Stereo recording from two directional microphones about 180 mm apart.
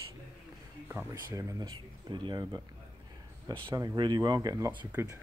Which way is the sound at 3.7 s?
20° right (ahead or behind).